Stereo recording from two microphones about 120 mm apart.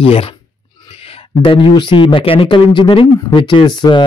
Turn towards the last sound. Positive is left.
turn(degrees=40)  # may be behind; listen again after turning